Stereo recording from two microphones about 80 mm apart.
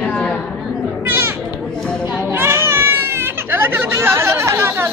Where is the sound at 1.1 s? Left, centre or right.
Right.